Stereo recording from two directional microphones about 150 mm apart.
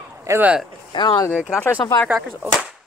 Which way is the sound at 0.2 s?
15° right (ahead or behind).